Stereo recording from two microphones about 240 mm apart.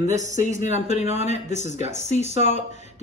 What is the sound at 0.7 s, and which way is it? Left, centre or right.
Speech, left.